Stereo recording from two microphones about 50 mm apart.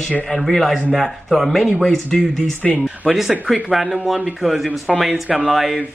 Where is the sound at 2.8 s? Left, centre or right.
Centre.